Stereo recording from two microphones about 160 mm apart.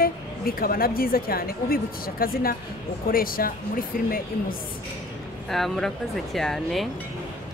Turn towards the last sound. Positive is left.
turn(degrees=0)  # may be behind; listen again after turning